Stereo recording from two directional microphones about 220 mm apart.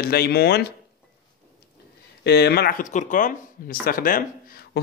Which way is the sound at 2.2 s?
50° left (ahead or behind).